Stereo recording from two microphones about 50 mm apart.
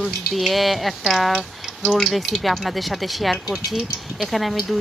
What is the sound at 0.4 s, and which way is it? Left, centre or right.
Speech, centre.